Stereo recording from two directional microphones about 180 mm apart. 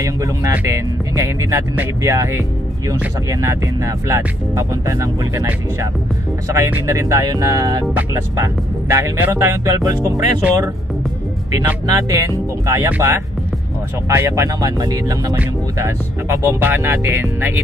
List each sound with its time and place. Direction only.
0.0 s speech: 15° right (ahead or behind)